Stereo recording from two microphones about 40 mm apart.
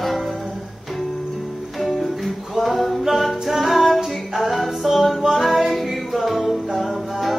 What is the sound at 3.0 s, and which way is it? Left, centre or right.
Music, centre.